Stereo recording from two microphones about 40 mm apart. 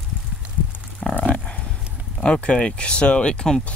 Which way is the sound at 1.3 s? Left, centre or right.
Left.